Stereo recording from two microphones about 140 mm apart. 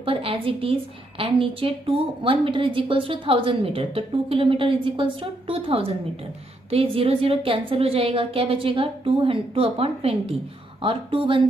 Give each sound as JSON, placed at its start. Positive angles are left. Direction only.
{"t": 0.0, "sound": "a woman's voice", "side_deg": -40}